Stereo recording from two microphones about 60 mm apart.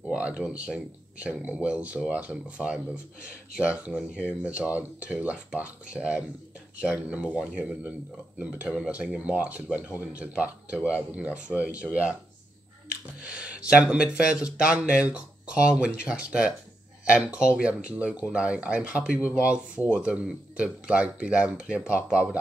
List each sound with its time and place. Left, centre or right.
0.1 s a sound: centre
0.5 s speech: right
4.1 s speech: left
4.6 s speech: right